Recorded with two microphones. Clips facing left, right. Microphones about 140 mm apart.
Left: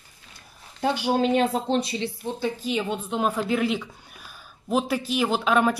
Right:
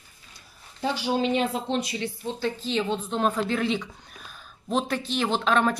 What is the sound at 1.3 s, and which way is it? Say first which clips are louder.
Speech: left 3 dB; 35° left (ahead or behind).